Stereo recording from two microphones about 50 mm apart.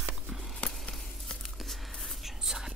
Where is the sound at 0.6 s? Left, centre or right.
Left.